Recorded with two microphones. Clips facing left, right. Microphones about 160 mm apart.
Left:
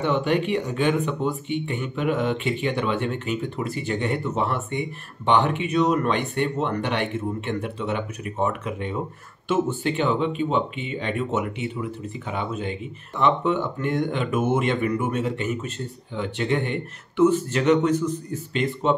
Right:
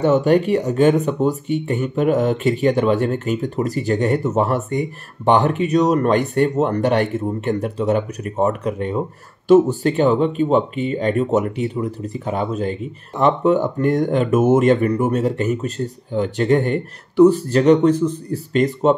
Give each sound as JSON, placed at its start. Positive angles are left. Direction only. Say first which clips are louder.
{"t": 0.0, "sound": "speech", "louder": "right 7 dB", "side_deg": -40}